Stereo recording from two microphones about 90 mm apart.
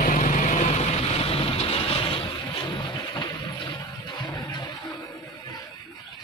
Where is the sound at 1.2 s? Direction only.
90° left; by 4.4 s 60° left (ahead or behind).